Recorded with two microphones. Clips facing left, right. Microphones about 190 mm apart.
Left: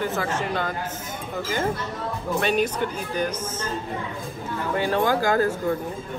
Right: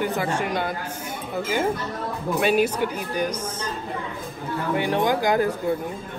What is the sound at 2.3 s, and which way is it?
Speech, 5° right (ahead or behind).